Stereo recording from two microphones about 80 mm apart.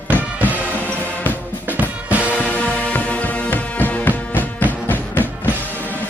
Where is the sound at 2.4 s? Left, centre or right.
Centre.